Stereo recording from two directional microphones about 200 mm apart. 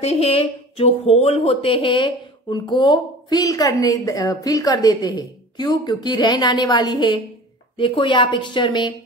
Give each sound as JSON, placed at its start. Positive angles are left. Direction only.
{"t": 0.0, "sound": "speech", "side_deg": 30}